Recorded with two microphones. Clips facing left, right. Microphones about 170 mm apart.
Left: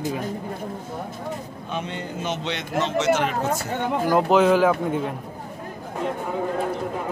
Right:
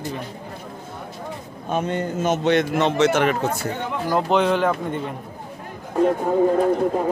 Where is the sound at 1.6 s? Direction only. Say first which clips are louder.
Right 8 dB; 45° right (ahead or behind); by 3.3 s 60° right (ahead or behind).